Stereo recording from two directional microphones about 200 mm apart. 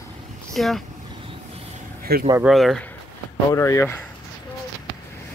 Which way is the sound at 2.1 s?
50° right (ahead or behind).